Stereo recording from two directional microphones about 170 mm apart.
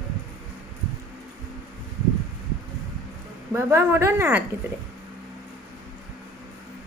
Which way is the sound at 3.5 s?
15° right (ahead or behind).